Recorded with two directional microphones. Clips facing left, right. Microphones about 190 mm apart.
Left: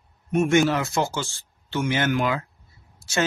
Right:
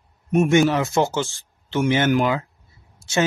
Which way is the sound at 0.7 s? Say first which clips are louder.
Right 4 dB; 15° right (ahead or behind).